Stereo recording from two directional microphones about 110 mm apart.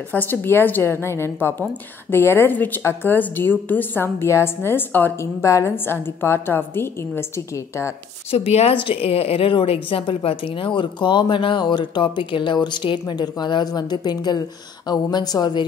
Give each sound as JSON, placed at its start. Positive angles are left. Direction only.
{"t": 0.1, "sound": "a woman's voice", "side_deg": 15}
{"t": 8.3, "sound": "a woman's voice", "side_deg": 65}